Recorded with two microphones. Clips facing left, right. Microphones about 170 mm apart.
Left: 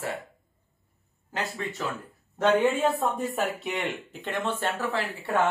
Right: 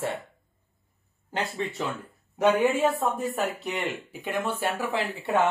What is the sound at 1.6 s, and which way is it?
Speech, centre (ahead or behind).